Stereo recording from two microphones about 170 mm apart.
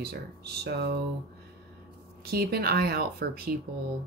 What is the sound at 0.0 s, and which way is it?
Speech, 70° right (ahead or behind).